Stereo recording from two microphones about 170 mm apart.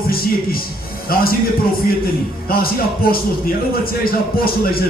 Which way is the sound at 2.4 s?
60° left (ahead or behind).